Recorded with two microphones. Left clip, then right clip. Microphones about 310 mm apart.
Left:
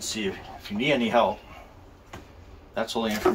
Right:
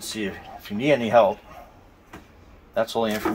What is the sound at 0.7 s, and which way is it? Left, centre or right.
Speech, right.